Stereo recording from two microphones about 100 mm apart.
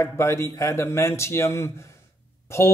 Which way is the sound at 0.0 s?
30° left (ahead or behind).